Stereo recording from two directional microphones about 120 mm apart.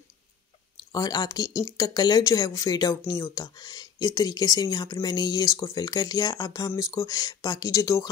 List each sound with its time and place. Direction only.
0.9 s speech: 30° left (ahead or behind)